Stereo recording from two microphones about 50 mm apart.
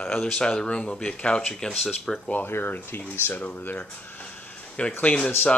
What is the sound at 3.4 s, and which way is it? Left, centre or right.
Speech, left.